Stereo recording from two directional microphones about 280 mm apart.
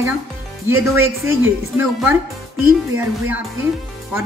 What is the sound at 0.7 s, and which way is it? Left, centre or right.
Speech, centre.